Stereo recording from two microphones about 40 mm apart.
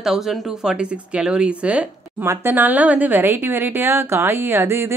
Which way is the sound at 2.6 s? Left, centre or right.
Right.